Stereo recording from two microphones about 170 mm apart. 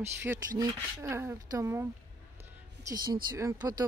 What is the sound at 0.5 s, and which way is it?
Speech, 20° right (ahead or behind).